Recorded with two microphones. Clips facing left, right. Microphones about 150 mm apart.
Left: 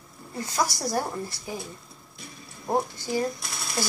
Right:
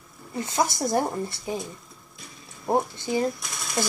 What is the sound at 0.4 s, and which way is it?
Speech, 25° right (ahead or behind).